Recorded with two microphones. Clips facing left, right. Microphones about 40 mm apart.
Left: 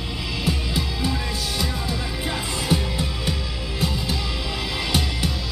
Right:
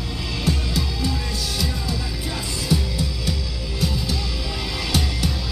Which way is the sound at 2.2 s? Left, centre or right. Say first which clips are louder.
Left 1 dB; left.